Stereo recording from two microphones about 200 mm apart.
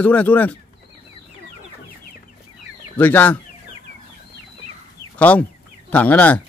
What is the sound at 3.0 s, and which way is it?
Speech, 10° left (ahead or behind).